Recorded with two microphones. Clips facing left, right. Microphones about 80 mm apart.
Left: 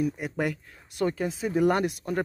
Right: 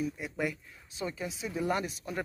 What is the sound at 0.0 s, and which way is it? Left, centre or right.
Speech, left.